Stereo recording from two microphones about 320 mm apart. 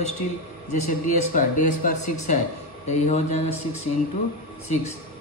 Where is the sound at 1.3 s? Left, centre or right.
Left.